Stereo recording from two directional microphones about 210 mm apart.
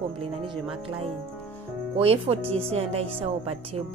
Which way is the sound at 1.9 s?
25° right (ahead or behind).